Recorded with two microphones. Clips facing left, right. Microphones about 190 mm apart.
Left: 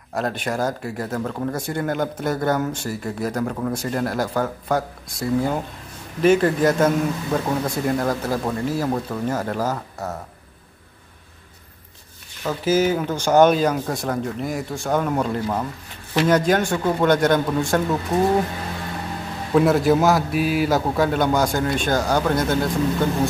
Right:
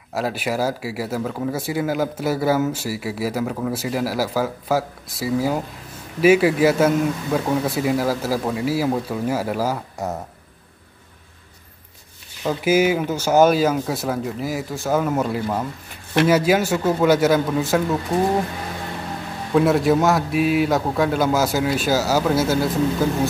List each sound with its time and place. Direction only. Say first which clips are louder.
0.1 s a man's voice: right 1 dB; 5° right (ahead or behind)
12.4 s speech: right 2 dB; 10° right (ahead or behind)
19.5 s speech: even; centre (ahead or behind)